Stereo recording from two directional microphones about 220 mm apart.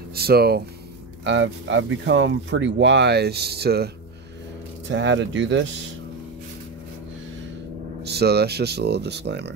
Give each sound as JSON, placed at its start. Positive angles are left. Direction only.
{"t": 0.1, "sound": "speech", "side_deg": -45}
{"t": 8.0, "sound": "speech", "side_deg": -50}